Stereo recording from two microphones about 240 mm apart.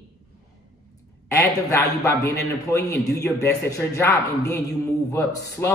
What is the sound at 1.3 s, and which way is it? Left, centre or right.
A man's voice, centre.